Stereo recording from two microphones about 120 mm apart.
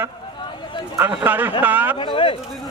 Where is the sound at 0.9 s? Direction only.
15° right (ahead or behind).